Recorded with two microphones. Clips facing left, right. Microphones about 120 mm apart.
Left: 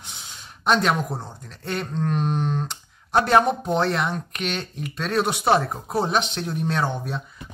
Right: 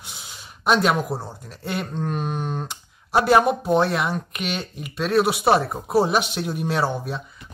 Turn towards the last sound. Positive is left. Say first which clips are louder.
# right 2 dB
turn(degrees=-5)  # may be behind; listen again after turning